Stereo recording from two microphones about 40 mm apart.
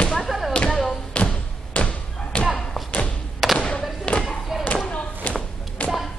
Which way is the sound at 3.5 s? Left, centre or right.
Left.